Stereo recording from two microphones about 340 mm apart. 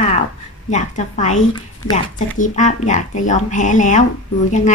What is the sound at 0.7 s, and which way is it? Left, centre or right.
A woman's voice, left.